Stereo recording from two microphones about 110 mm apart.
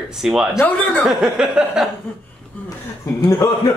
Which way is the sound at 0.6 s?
15° left (ahead or behind).